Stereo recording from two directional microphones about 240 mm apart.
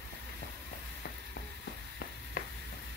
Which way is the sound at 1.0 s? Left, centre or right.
Left.